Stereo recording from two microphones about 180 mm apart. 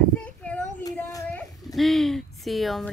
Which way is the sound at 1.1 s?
20° left (ahead or behind).